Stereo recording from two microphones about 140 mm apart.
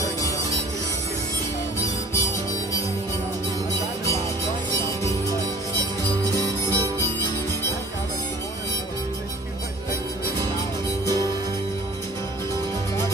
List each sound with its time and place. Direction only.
2.1 s music: 20° left (ahead or behind)
6.3 s harmonica: 25° right (ahead or behind)